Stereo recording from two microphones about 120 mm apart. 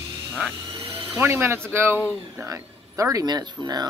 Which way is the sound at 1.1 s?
20° right (ahead or behind).